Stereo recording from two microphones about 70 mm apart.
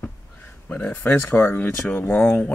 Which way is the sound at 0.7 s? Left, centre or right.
Left.